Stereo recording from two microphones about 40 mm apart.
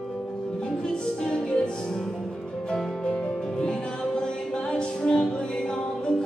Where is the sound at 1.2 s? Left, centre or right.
Centre.